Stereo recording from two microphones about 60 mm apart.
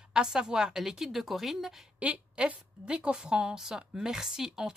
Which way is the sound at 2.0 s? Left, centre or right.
Right.